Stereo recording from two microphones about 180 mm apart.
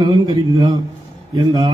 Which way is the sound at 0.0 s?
25° right (ahead or behind).